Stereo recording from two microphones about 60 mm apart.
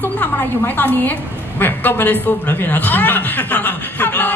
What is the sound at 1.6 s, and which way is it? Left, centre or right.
Speech, left.